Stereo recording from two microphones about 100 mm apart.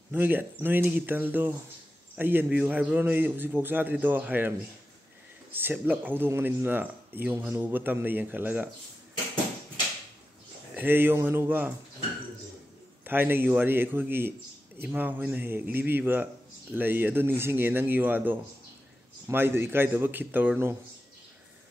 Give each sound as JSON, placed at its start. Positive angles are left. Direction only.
{"t": 0.1, "sound": "a man's voice", "side_deg": -20}
{"t": 10.8, "sound": "speech", "side_deg": -20}
{"t": 13.0, "sound": "a man's voice", "side_deg": -20}